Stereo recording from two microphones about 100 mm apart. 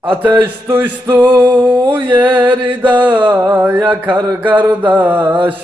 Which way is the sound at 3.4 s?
20° right (ahead or behind).